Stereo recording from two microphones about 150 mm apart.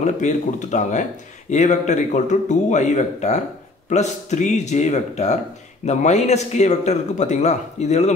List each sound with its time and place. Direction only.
0.0 s speech: 55° left (ahead or behind)